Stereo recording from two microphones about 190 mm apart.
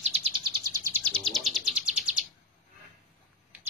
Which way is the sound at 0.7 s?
15° right (ahead or behind).